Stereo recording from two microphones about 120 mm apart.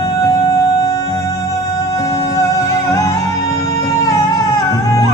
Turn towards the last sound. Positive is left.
turn(degrees=30)  # may be behind; listen again after turning